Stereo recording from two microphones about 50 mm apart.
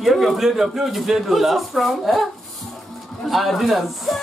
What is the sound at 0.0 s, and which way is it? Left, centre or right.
Speech, centre.